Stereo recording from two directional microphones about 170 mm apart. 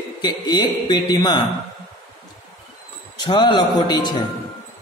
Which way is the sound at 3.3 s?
25° left (ahead or behind).